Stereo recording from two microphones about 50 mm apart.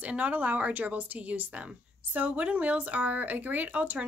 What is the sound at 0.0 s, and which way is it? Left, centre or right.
Speech, right.